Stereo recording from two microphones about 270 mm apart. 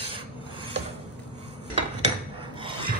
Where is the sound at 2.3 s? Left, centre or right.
Centre.